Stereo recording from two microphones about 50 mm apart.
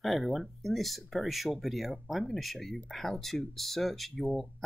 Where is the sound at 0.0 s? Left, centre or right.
Centre.